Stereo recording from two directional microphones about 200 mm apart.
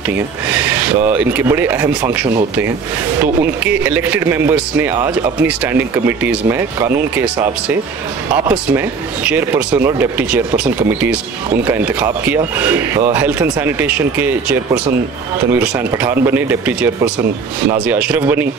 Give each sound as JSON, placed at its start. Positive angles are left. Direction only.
{"t": 0.5, "sound": "speech", "side_deg": -5}
{"t": 3.6, "sound": "speech", "side_deg": -10}